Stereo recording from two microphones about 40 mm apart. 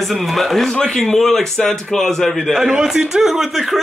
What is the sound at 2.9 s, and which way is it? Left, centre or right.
Speech, centre.